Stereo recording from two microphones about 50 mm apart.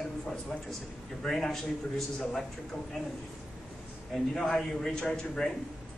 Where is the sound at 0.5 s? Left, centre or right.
Centre.